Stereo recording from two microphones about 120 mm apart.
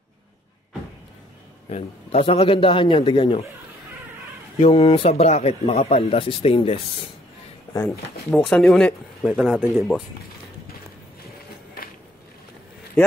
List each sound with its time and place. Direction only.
1.7 s speech: 60° left (ahead or behind)
4.6 s speech: 50° left (ahead or behind)
8.3 s speech: 5° left (ahead or behind)
9.3 s speech: 10° right (ahead or behind)